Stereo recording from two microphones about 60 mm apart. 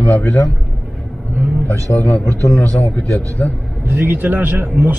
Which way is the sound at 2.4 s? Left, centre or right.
Left.